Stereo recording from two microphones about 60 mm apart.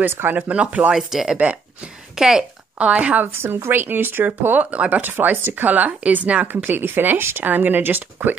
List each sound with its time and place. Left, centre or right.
0.0 s speech: right
0.4 s speech: right
0.9 s speech: centre
2.1 s a sound: centre
2.9 s speech: right
3.3 s speech: right
5.0 s speech: right